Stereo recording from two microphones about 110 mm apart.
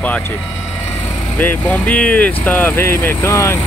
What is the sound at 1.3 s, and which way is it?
Speech, 15° left (ahead or behind).